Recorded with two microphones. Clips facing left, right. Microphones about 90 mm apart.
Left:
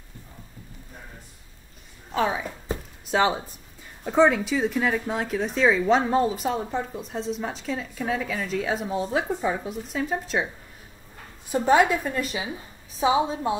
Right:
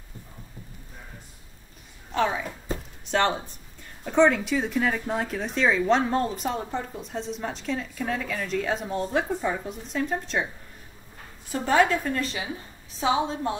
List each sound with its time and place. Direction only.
2.1 s speech: 5° left (ahead or behind)
11.5 s a woman's voice: 20° left (ahead or behind)